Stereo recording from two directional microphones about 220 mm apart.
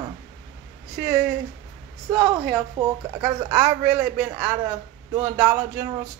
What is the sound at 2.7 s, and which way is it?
A man's voice, 15° right (ahead or behind).